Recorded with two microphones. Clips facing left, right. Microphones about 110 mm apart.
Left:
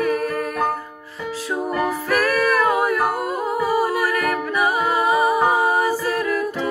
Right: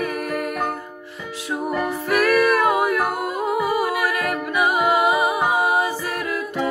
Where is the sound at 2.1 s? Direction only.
20° right (ahead or behind).